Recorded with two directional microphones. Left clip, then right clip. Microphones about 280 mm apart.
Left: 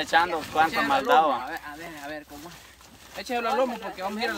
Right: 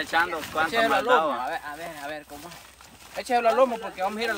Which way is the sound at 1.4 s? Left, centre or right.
Right.